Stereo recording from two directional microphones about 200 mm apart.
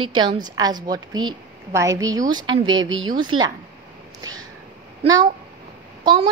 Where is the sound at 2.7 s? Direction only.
75° right (ahead or behind).